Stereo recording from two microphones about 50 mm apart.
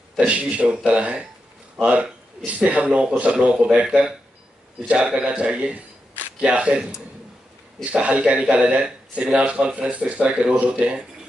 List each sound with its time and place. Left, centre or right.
0.3 s speech: right
3.3 s speech: centre
3.7 s speech: right
7.8 s speech: right